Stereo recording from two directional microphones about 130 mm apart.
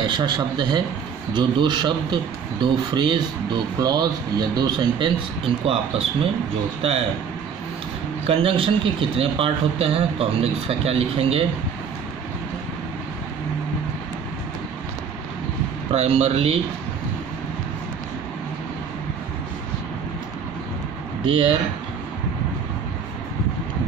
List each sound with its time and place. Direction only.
0.0 s a man's voice: 35° right (ahead or behind)
8.3 s a man's voice: 45° right (ahead or behind)
15.9 s a man's voice: 50° right (ahead or behind)
21.2 s speech: 45° right (ahead or behind)